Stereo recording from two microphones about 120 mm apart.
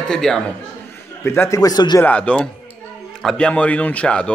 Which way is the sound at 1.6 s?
35° left (ahead or behind).